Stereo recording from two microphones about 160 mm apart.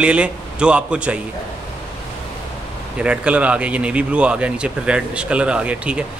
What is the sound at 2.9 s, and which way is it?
Speech, 5° right (ahead or behind).